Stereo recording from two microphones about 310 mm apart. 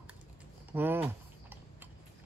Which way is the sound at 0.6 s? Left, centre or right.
Centre.